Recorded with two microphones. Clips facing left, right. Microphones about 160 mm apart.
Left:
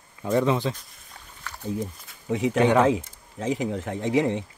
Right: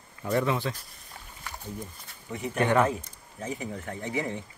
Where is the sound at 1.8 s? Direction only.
85° left.